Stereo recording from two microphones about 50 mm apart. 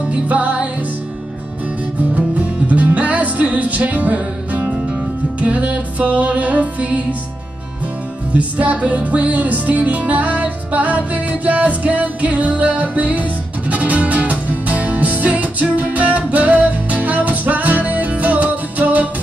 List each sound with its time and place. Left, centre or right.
0.1 s music: right
2.1 s music: right
8.3 s music: right